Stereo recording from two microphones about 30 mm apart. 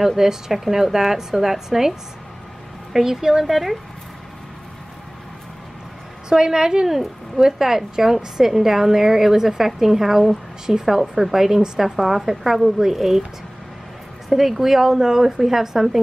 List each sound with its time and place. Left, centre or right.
0.0 s a woman's voice: centre
3.4 s a woman's voice: centre
6.2 s a woman's voice: right
6.9 s a woman's voice: centre
7.4 s a woman's voice: centre
14.3 s a woman's voice: centre